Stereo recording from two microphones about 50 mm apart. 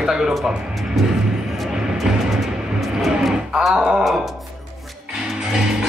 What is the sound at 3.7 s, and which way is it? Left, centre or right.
Groan, centre.